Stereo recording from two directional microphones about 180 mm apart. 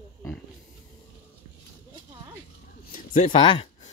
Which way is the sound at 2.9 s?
40° left (ahead or behind).